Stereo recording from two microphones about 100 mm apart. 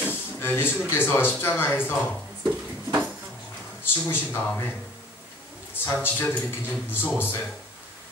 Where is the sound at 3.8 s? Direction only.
20° left (ahead or behind).